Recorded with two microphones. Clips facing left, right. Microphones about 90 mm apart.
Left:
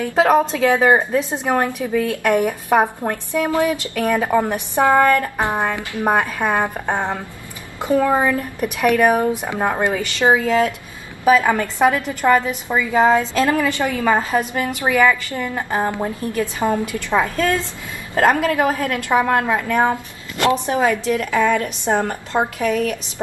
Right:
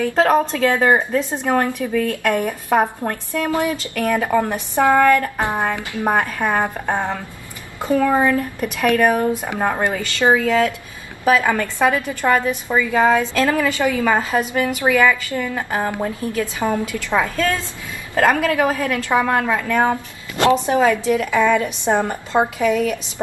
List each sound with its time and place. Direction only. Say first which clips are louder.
0.0 s a woman's voice: left 1 dB; 10° left (ahead or behind)
15.3 s a woman's voice: even; 15° left (ahead or behind)
21.0 s a woman's voice: right 1 dB; 15° right (ahead or behind)